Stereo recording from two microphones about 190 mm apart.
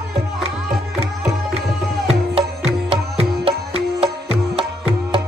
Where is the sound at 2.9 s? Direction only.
30° right (ahead or behind).